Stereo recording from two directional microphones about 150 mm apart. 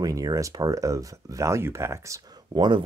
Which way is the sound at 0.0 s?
25° right (ahead or behind).